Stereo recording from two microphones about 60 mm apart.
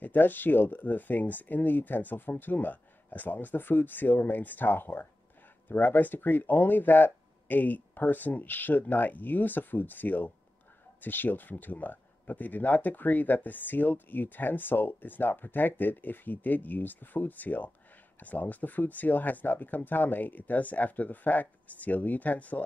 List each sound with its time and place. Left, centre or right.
0.0 s speech: left